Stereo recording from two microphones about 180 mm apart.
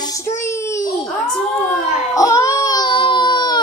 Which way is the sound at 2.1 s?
15° left (ahead or behind).